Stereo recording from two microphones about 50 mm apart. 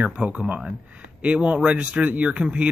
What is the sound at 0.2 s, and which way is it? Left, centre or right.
Speech, right.